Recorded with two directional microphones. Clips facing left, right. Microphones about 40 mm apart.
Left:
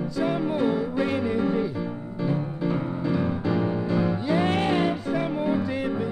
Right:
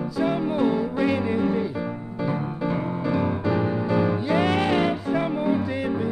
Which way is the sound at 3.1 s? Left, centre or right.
Right.